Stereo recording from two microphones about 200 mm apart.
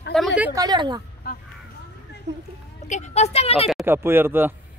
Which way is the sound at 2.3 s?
60° right (ahead or behind).